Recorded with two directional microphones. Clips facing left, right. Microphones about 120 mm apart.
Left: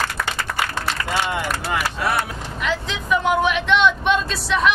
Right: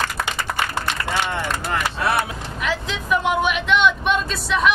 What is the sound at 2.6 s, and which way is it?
Vehicle, centre (ahead or behind).